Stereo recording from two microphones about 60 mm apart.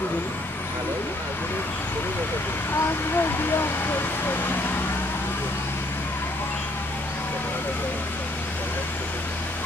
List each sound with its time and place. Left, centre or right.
2.7 s speech: left